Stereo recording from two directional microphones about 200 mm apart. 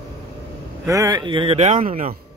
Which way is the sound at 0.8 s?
15° right (ahead or behind).